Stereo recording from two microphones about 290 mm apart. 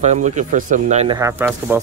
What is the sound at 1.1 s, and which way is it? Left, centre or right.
Speech, centre.